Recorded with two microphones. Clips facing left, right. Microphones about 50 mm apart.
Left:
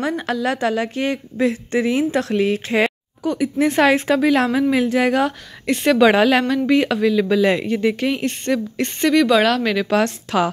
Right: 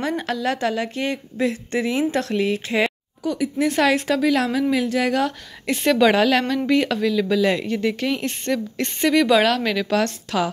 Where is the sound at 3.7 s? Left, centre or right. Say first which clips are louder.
Left 3 dB; left.